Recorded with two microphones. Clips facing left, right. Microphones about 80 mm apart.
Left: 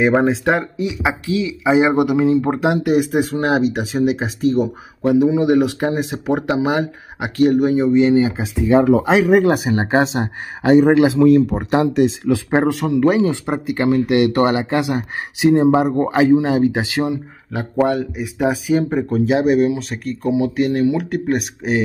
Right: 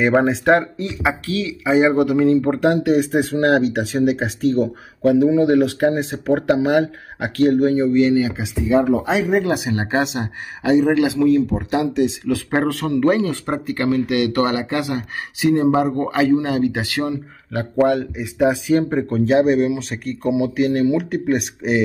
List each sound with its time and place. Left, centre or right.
0.0 s speech: centre; by 8.4 s left
8.6 s speech: left
9.4 s speech: left
11.3 s speech: left
12.3 s speech: centre
17.5 s speech: centre